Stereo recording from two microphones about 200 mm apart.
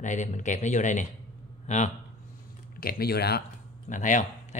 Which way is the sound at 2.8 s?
50° left (ahead or behind).